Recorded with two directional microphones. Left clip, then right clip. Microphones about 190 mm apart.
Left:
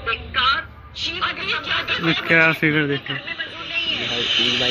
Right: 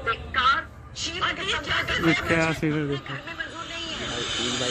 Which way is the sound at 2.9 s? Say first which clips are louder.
Left 6 dB; 35° right (ahead or behind).